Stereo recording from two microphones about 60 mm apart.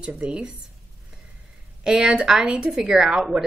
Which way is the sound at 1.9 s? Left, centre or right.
Centre.